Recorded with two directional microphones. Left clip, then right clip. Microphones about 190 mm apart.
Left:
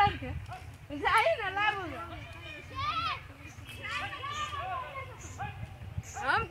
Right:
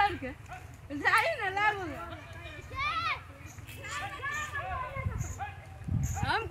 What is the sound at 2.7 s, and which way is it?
Children playing, 60° left (ahead or behind).